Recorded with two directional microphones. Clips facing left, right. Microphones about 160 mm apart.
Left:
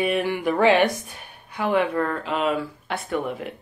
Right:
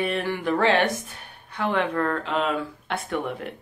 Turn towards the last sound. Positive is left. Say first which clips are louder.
# left 2 dB
turn(degrees=0)  # may be behind; listen again after turning